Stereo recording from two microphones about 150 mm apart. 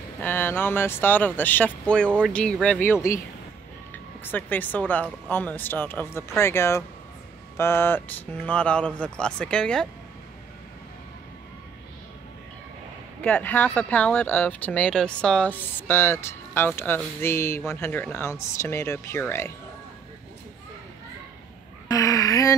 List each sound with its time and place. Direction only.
0.2 s speech: 15° left (ahead or behind)
4.2 s speech: 10° left (ahead or behind)
13.2 s speech: 10° left (ahead or behind)
21.8 s a sound: 20° left (ahead or behind)